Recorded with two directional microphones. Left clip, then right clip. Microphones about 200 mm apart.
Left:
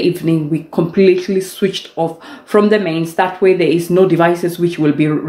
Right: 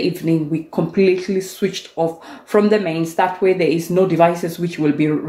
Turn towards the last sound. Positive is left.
turn(degrees=5)  # may be behind; listen again after turning